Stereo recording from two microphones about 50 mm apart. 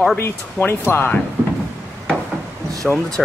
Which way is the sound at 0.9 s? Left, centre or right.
Left.